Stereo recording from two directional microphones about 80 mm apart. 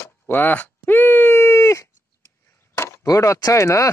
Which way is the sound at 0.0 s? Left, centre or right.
Left.